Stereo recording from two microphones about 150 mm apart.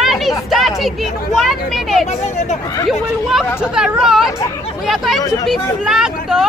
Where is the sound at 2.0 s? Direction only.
50° left (ahead or behind).